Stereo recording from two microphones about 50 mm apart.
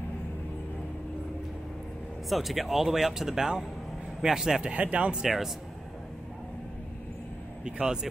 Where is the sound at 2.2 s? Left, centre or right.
Centre; by 5.1 s right.